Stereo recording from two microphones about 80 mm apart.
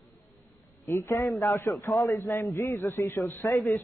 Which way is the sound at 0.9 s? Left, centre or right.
Left.